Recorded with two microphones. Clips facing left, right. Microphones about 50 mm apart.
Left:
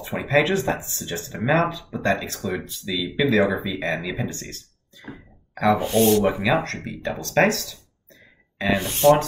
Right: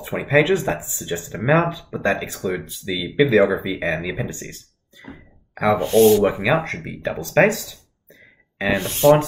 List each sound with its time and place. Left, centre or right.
0.3 s speech: centre
5.8 s speech: centre